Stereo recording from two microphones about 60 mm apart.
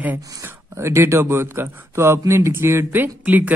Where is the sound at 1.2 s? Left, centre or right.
Right.